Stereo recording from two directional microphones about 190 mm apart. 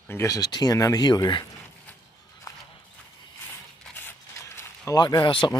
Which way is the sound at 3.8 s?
10° left (ahead or behind).